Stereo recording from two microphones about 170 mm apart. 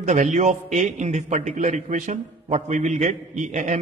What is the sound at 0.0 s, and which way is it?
A man's voice, 45° right (ahead or behind).